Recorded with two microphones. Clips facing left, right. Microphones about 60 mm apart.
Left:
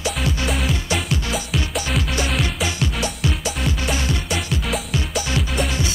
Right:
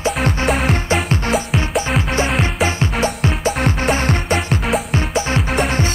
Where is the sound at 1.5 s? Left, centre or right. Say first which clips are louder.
Right 5 dB; right.